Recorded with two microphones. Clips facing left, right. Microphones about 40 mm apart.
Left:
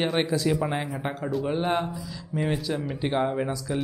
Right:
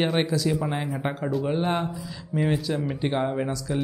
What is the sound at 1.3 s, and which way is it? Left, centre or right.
A man's voice, centre.